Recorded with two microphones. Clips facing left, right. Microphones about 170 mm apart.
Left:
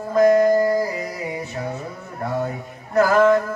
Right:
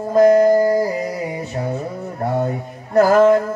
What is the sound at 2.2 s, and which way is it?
Music, 30° right (ahead or behind).